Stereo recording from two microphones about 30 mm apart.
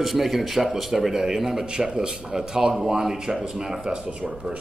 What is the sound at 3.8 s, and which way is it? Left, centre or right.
Speech, right.